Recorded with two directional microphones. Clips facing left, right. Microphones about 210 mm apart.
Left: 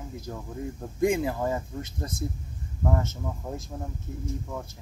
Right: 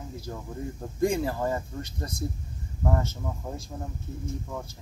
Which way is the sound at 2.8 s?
Centre (ahead or behind).